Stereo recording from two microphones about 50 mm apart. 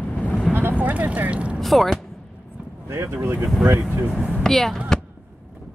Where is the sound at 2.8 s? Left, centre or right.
Right.